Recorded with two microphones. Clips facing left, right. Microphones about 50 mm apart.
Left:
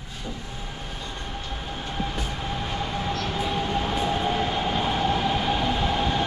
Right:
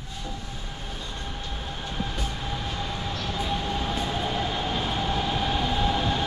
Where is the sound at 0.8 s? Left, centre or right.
Centre.